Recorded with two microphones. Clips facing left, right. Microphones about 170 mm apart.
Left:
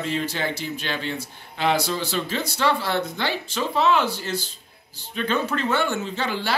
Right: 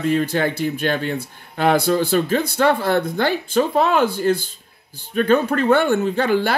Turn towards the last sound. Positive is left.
turn(degrees=-55)  # may be behind; listen again after turning